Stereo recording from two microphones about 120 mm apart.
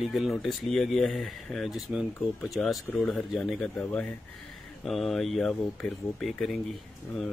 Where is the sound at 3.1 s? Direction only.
Centre (ahead or behind).